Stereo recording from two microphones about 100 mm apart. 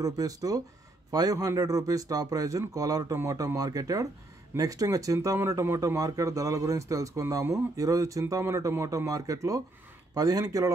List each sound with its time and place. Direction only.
0.0 s speech: 35° right (ahead or behind)